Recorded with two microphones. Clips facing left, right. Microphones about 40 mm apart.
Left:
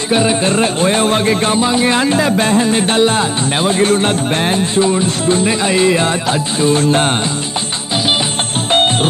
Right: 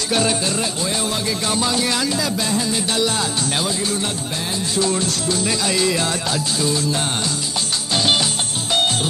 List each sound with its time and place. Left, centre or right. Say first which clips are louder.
0.1 s speech: left 6 dB; left
0.5 s music: left 9 dB; left
1.6 s music: left 7 dB; left
4.8 s music: left 7 dB; left